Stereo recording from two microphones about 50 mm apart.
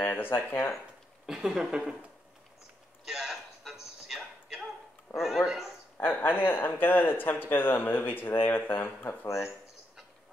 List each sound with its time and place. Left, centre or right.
0.0 s speech: left
1.2 s speech: centre
3.1 s a sound: centre
5.1 s a man's voice: centre
5.9 s speech: left